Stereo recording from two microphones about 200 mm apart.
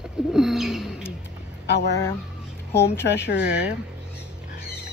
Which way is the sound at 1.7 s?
55° left (ahead or behind).